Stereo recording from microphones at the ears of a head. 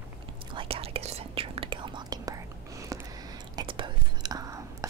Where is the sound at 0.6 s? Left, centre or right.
Right.